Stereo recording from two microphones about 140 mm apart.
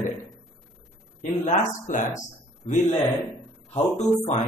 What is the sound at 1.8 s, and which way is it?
Speech, 60° left (ahead or behind).